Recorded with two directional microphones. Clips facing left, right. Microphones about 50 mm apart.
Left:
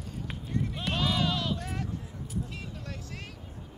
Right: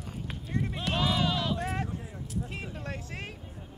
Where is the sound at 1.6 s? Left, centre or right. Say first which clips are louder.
Right 4 dB; right.